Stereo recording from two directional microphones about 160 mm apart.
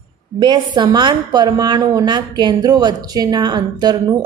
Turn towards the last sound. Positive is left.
turn(degrees=-25)  # may be behind; listen again after turning